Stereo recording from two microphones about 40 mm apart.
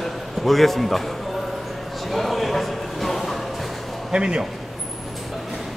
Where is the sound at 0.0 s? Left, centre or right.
Centre.